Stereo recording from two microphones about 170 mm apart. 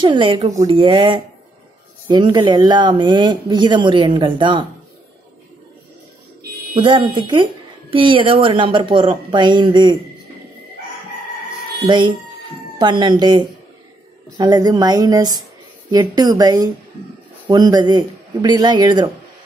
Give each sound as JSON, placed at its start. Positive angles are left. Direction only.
{"t": 0.0, "sound": "speech", "side_deg": -30}
{"t": 6.8, "sound": "speech", "side_deg": -30}
{"t": 11.8, "sound": "speech", "side_deg": -30}